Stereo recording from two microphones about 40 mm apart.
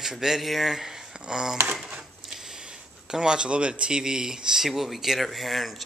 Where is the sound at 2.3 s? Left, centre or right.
Centre.